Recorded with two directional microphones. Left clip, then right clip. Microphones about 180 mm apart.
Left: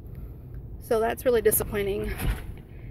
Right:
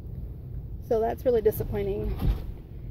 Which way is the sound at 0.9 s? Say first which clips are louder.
Left 1 dB; 10° right (ahead or behind).